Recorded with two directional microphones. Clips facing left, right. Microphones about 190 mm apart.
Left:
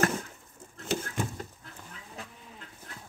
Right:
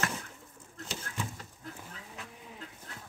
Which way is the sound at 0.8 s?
50° left (ahead or behind).